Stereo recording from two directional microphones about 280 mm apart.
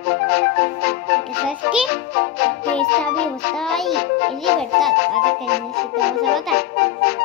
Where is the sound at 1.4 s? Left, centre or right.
Centre.